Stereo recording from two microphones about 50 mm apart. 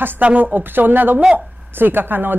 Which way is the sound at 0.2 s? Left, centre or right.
Right.